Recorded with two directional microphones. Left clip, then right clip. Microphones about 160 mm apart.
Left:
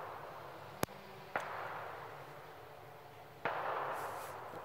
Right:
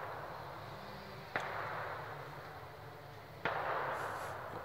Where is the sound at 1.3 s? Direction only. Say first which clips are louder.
Right 1 dB; 35° left (ahead or behind).